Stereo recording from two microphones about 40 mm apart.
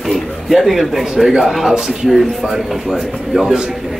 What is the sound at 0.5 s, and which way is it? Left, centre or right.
Speech, centre.